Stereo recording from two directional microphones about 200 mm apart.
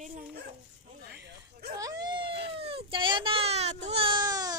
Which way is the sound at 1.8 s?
20° right (ahead or behind).